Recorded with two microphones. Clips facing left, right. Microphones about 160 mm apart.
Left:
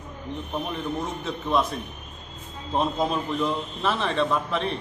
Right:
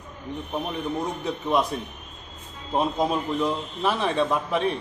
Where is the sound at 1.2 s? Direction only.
15° right (ahead or behind).